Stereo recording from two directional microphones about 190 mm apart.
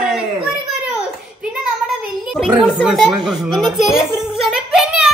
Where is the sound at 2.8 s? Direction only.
5° right (ahead or behind).